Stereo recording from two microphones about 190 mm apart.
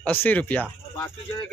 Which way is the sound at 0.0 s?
10° left (ahead or behind).